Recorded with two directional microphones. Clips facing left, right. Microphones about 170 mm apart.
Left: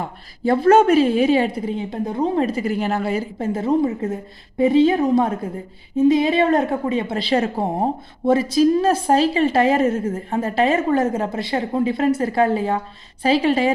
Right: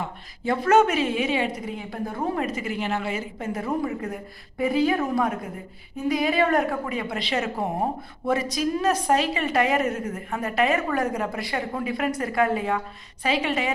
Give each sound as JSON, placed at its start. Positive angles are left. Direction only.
{"t": 0.0, "sound": "a woman's voice", "side_deg": 35}